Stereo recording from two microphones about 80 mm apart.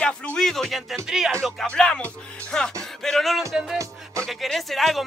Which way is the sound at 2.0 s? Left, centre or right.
Centre.